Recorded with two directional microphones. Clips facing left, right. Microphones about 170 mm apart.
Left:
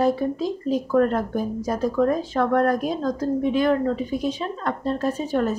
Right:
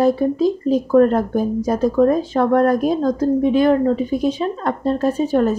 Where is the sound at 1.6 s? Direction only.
20° right (ahead or behind).